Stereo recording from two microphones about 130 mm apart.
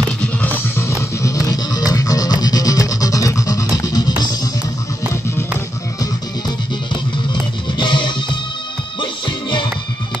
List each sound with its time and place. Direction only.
0.7 s music: 25° left (ahead or behind)
7.8 s music: 35° left (ahead or behind)